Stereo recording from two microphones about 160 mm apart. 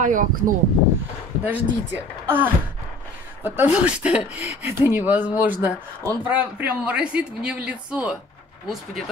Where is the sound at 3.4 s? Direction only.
10° right (ahead or behind).